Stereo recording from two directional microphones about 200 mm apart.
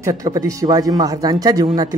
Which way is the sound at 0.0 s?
15° right (ahead or behind).